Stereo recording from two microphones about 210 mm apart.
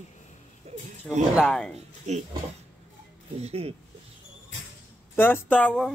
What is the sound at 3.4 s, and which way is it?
Speech, 30° right (ahead or behind).